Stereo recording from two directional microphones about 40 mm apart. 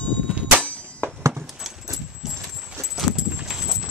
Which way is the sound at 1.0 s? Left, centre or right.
Left.